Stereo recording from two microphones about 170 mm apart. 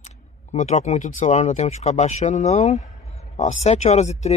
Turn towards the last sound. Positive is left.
turn(degrees=40)  # may be behind; listen again after turning